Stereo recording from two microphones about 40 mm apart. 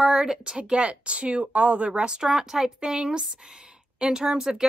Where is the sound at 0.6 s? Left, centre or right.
Right.